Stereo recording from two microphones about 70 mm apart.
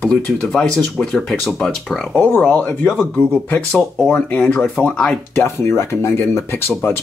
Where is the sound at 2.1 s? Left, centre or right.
Left.